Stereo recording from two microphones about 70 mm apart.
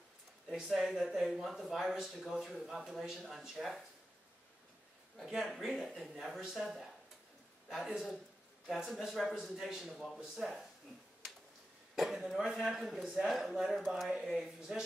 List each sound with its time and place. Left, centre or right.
0.7 s speech: centre
5.2 s speech: centre
11.9 s speech: centre
14.3 s speech: centre